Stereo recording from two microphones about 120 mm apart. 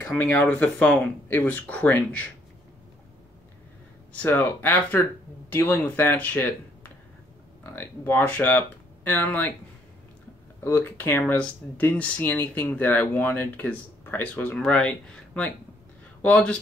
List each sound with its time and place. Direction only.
0.2 s speech: 15° left (ahead or behind)
4.1 s speech: 15° left (ahead or behind)
10.6 s speech: 15° left (ahead or behind)